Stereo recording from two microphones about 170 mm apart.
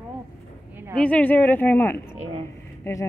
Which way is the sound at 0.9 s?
10° left (ahead or behind).